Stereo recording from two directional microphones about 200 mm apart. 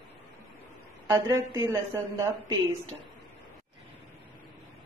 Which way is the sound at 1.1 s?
20° right (ahead or behind).